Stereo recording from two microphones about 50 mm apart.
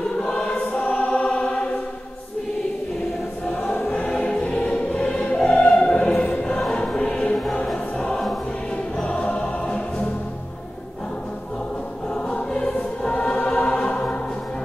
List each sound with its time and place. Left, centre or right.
0.0 s choir: centre
4.1 s music: centre
6.4 s choir: centre
9.0 s music: left
12.4 s choir: centre